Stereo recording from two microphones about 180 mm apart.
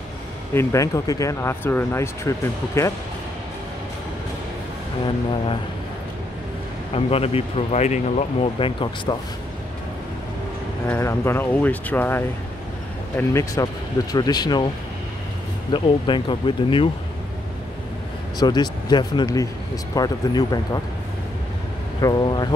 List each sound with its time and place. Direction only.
0.6 s speech: 15° left (ahead or behind)
6.9 s speech: 35° left (ahead or behind)
10.9 s speech: 15° left (ahead or behind)
15.7 s speech: 25° left (ahead or behind)
18.4 s speech: 25° left (ahead or behind)
22.0 s speech: 25° left (ahead or behind)